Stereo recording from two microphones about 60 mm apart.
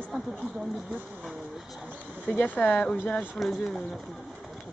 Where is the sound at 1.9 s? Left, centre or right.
Left.